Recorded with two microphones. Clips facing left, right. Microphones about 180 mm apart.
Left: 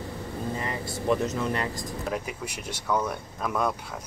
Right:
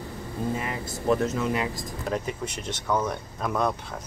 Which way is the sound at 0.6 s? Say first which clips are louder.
Even; 10° right (ahead or behind).